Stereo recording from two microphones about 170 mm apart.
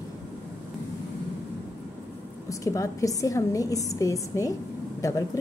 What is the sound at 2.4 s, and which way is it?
A woman's voice, 20° left (ahead or behind).